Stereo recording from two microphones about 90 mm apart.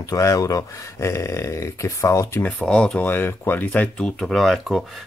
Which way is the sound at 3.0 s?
20° left (ahead or behind).